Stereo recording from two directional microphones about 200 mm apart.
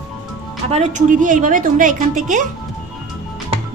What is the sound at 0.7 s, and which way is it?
A woman's voice, 35° right (ahead or behind).